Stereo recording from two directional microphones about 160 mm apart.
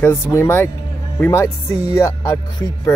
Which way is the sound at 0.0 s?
15° left (ahead or behind).